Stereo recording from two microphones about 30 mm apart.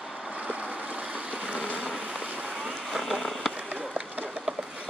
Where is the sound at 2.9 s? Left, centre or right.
Centre.